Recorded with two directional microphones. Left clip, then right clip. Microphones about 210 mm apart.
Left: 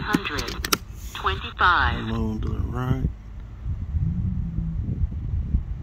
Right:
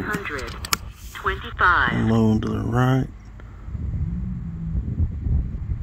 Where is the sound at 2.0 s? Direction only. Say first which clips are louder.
Right 9 dB; 55° right (ahead or behind).